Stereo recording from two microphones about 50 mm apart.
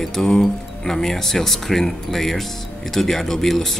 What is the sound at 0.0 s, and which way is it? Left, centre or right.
Speech, centre.